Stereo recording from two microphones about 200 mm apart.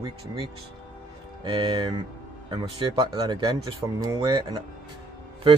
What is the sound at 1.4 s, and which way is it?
Speech, 25° right (ahead or behind).